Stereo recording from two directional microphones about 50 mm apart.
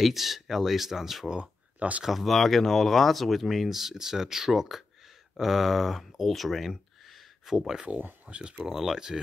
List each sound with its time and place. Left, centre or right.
0.0 s speech: centre
1.3 s speech: right
2.0 s speech: centre
8.3 s speech: right
8.7 s speech: centre